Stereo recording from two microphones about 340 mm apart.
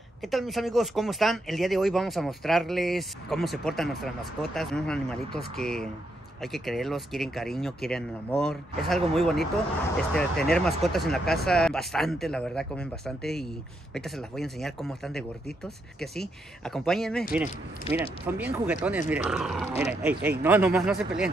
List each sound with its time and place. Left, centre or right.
0.2 s speech: centre